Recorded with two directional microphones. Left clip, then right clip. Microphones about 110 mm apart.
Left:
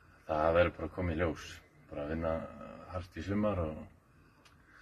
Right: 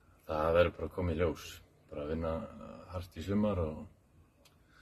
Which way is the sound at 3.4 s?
40° right (ahead or behind).